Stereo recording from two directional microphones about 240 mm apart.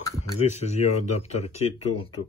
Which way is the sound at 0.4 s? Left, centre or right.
Left.